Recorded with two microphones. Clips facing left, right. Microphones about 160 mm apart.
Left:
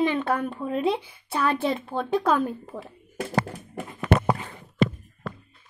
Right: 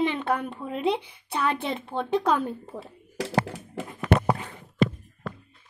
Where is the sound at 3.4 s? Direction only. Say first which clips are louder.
Even; 90° right.